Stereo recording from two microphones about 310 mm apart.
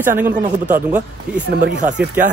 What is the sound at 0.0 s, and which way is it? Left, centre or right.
Speech, centre.